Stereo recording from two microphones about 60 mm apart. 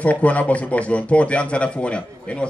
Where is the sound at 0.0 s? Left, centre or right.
Left.